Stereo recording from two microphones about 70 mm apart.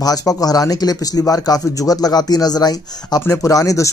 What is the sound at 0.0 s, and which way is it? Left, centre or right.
Speech, left.